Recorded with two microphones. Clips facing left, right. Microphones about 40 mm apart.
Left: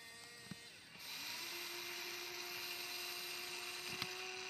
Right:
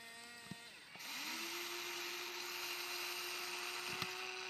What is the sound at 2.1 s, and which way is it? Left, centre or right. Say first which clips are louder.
Tools: right 2 dB; right.